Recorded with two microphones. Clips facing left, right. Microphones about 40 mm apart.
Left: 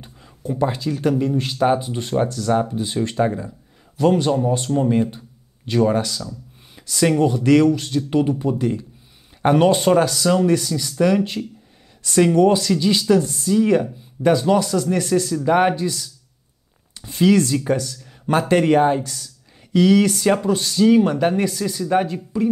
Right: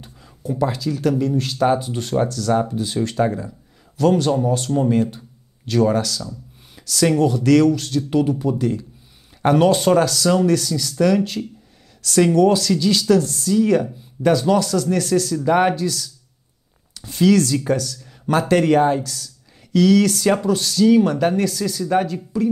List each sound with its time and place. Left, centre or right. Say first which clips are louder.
0.4 s speech: even; left
1.6 s speech: even; centre
6.8 s a sound: even; left
7.1 s speech: even; left
15.3 s speech: even; centre
15.7 s speech: right 1 dB; left